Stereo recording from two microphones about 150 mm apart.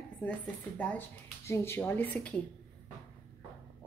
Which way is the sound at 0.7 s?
10° left (ahead or behind).